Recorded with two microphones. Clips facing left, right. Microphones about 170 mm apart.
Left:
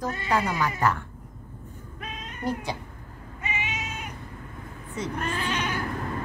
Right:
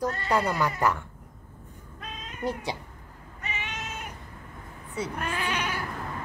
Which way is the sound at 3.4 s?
10° left (ahead or behind).